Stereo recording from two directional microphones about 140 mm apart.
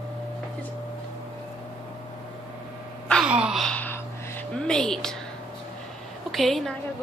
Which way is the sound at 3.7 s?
15° left (ahead or behind).